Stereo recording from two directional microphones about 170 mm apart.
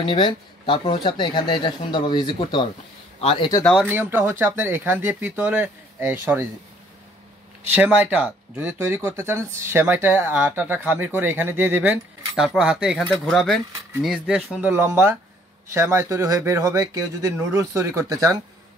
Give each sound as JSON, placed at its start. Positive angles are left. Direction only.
{"t": 0.0, "sound": "speech", "side_deg": 30}
{"t": 3.8, "sound": "speech", "side_deg": -10}
{"t": 7.7, "sound": "speech", "side_deg": -10}